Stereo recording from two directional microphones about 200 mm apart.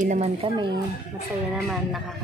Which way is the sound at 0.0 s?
35° right (ahead or behind).